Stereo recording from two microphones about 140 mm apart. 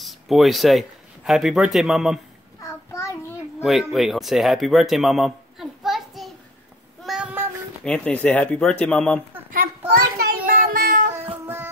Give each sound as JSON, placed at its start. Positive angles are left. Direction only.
{"t": 0.0, "sound": "speech", "side_deg": 0}
{"t": 2.6, "sound": "child singing", "side_deg": 20}
{"t": 3.6, "sound": "speech", "side_deg": 0}
{"t": 7.0, "sound": "child singing", "side_deg": -5}
{"t": 7.8, "sound": "speech", "side_deg": 5}
{"t": 10.1, "sound": "child singing", "side_deg": -90}
{"t": 11.4, "sound": "music", "side_deg": -15}